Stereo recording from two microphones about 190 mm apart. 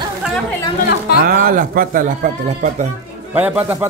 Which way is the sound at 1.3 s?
50° right (ahead or behind).